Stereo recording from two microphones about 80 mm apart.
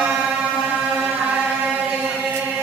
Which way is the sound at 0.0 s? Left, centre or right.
Centre.